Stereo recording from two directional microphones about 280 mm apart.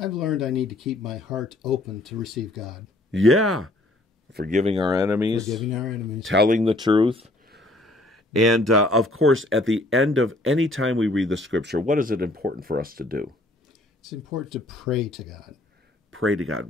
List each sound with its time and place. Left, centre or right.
0.0 s speech: centre
3.1 s speech: right
4.3 s speech: right; by 6.2 s centre
6.2 s speech: right
6.6 s speech: centre
7.4 s a sound: right
7.7 s a sound: centre
8.3 s speech: right
9.1 s speech: right
14.0 s speech: centre
16.1 s speech: right